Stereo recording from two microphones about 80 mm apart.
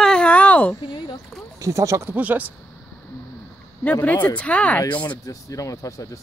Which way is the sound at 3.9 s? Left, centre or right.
Centre.